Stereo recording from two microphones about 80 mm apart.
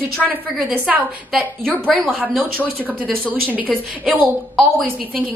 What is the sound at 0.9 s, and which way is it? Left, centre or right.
A woman's voice, right.